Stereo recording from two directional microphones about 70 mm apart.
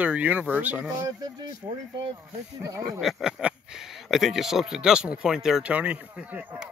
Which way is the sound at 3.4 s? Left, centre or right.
Centre.